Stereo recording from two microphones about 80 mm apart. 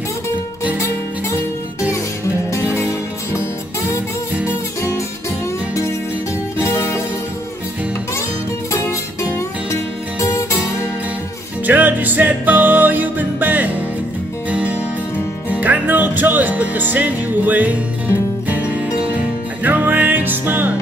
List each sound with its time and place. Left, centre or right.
2.7 s music: left
6.6 s music: left
8.7 s music: left
11.6 s music: right